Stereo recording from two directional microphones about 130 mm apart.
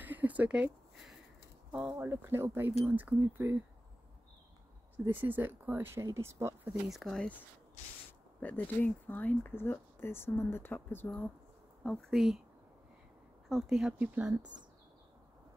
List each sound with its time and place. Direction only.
0.0 s a sound: 15° right (ahead or behind)
1.7 s speech: 10° right (ahead or behind)
2.0 s speech: 20° right (ahead or behind)
4.9 s speech: 15° right (ahead or behind)
6.9 s speech: centre (ahead or behind)
8.4 s speech: 15° left (ahead or behind)
11.8 s speech: 5° left (ahead or behind)
13.5 s speech: 5° right (ahead or behind)